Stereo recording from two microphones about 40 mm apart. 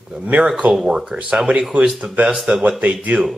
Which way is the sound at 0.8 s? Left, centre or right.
Centre.